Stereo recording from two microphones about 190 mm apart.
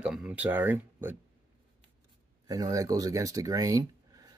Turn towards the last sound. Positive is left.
turn(degrees=-20)  # may be behind; listen again after turning